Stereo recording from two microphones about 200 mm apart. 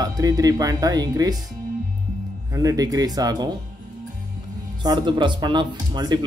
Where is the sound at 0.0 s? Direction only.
20° right (ahead or behind).